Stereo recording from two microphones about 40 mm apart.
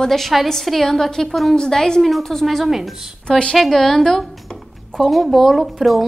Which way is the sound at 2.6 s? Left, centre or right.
Centre.